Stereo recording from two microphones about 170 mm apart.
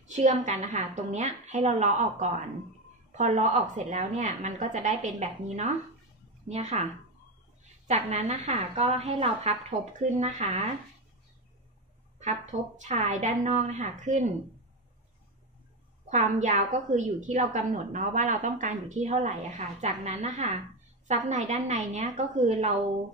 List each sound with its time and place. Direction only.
0.1 s a woman's voice: 45° right (ahead or behind)
7.9 s a woman's voice: 40° right (ahead or behind)
12.2 s a woman's voice: 45° right (ahead or behind)
16.1 s a woman's voice: 45° right (ahead or behind)